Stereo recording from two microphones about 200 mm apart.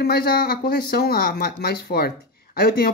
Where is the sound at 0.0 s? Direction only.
50° left (ahead or behind).